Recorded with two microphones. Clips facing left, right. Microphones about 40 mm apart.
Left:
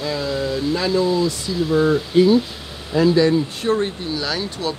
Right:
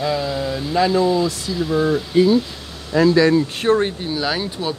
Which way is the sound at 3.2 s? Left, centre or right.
Right.